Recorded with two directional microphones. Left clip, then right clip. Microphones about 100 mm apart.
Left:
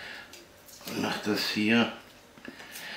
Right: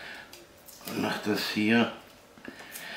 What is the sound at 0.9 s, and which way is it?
Speech, centre (ahead or behind).